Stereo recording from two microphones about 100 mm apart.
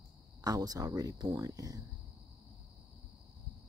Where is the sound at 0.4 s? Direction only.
40° right (ahead or behind).